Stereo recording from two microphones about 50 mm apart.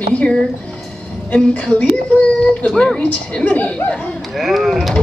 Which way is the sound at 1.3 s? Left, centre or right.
Left.